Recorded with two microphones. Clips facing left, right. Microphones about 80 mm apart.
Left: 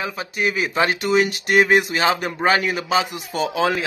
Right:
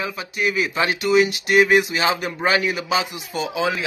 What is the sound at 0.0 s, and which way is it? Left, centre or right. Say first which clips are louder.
A man's voice: left 1 dB; left.